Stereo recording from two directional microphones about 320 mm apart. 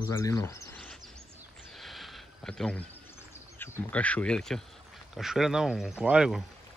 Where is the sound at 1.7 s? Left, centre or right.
Centre.